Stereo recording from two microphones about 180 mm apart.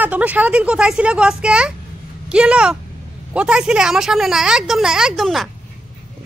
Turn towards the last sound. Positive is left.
turn(degrees=0)  # may be behind; listen again after turning